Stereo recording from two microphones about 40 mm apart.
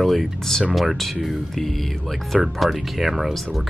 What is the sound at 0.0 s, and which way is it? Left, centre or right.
Speech, centre.